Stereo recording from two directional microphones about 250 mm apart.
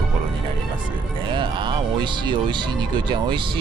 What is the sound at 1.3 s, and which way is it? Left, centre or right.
Speech, centre.